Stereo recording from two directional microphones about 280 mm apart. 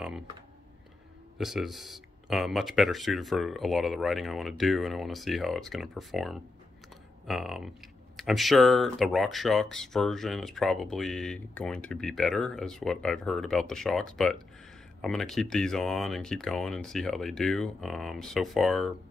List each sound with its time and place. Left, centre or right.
1.4 s speech: centre